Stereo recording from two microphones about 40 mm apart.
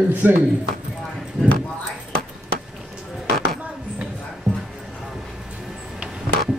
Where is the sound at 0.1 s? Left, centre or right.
Right.